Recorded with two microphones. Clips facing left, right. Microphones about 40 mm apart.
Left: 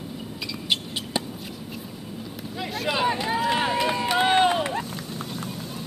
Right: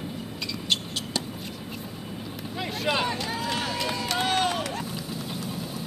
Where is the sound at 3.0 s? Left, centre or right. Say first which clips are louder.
Left 6 dB; centre.